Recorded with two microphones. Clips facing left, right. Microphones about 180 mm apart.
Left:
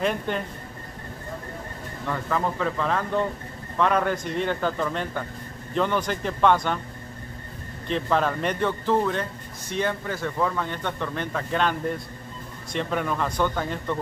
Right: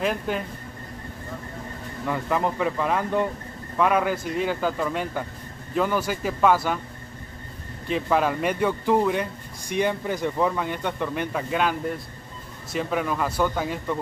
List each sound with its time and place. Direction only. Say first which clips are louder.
0.0 s speech: even; 5° right (ahead or behind)
2.0 s a man's voice: right 2 dB; 15° right (ahead or behind)
7.9 s a man's voice: right 1 dB; 10° right (ahead or behind)
12.7 s a man's voice: right 1 dB; 5° right (ahead or behind)